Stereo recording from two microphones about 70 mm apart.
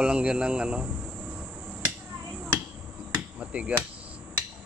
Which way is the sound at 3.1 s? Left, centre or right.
Centre.